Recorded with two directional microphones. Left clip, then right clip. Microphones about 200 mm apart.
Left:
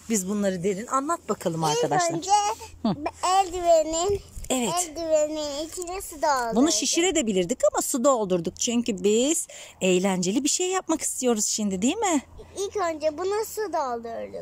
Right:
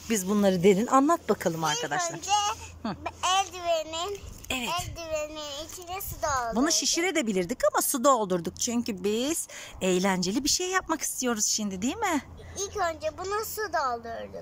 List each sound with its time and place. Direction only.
0.1 s speech: 10° left (ahead or behind)
0.4 s speech: 5° right (ahead or behind)
1.8 s a child's voice: 25° left (ahead or behind)